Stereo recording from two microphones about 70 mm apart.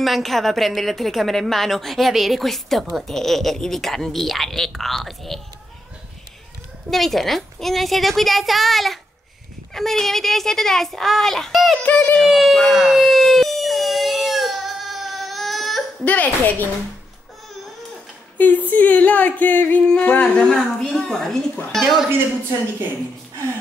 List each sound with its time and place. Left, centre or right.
0.0 s a woman's voice: centre
6.9 s a woman's voice: centre
11.8 s speech: left
12.2 s a sound: centre
16.0 s speech: left
18.4 s speech: left
20.4 s a child's voice: centre